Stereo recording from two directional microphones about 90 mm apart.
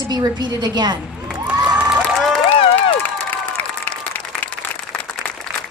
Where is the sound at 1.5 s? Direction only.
10° right (ahead or behind).